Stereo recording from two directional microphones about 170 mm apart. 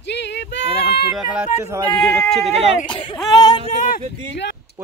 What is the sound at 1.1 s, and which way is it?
Speech, 5° right (ahead or behind).